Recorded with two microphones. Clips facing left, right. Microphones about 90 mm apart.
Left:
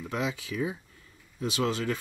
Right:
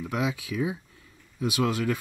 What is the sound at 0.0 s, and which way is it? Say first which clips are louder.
Speech: right 3 dB; 10° right (ahead or behind).